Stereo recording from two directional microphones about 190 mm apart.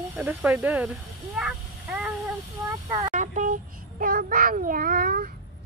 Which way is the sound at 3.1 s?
40° right (ahead or behind).